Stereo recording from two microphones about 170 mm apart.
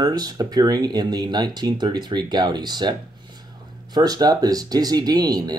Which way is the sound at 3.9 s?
25° right (ahead or behind).